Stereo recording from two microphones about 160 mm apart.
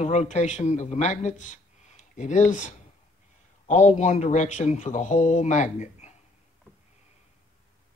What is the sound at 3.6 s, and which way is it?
Speech, 50° left (ahead or behind).